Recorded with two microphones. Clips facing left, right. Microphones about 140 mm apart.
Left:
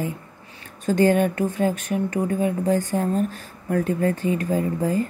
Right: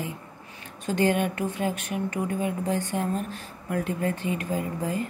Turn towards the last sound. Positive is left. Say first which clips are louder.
# left 6 dB
turn(degrees=40)  # may be behind; listen again after turning